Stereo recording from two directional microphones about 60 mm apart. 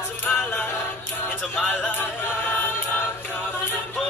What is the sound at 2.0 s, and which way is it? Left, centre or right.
Choir, left.